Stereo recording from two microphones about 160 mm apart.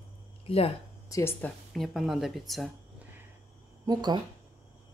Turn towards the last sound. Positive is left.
turn(degrees=-25)  # may be behind; listen again after turning